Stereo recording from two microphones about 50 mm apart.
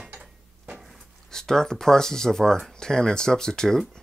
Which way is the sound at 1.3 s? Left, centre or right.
Centre.